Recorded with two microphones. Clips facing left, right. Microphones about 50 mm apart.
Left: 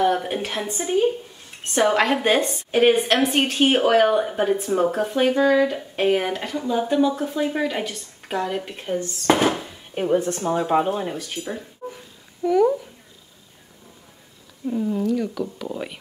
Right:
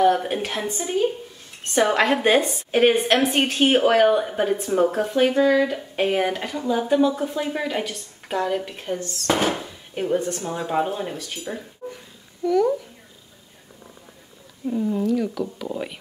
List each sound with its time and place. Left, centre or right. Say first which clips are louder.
0.0 s a woman's voice: right 2 dB; centre
9.2 s speech: left 3 dB; left
9.9 s speech: left 2 dB; centre
11.8 s a sound: left 1 dB; centre
12.4 s speech: left 2 dB; centre
14.7 s a woman's voice: even; centre